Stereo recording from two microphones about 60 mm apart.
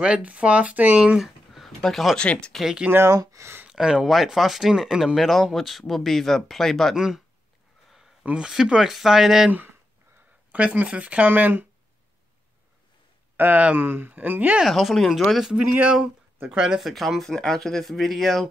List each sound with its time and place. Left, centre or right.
0.0 s speech: centre
1.2 s a sound: centre
1.8 s speech: centre
3.1 s speech: right
3.7 s speech: centre
7.9 s a sound: centre
8.3 s speech: centre
10.5 s speech: right
13.4 s speech: right
14.6 s speech: centre
15.8 s speech: centre
16.8 s speech: centre